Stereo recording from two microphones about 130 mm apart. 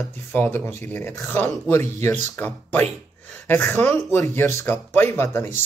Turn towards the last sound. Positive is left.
turn(degrees=15)  # may be behind; listen again after turning